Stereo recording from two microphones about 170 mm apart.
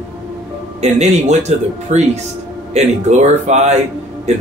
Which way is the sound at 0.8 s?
40° right (ahead or behind).